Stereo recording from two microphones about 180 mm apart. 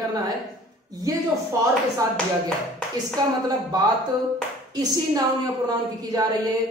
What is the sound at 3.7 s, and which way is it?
Speech, 20° right (ahead or behind).